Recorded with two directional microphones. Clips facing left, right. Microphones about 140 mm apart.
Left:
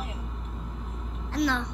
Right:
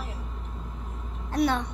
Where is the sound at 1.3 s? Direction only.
55° right (ahead or behind).